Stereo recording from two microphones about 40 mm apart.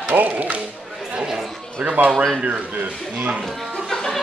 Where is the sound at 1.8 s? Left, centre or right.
Right.